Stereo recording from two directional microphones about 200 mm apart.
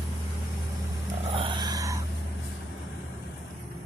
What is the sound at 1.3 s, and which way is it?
Vehicle, 25° right (ahead or behind).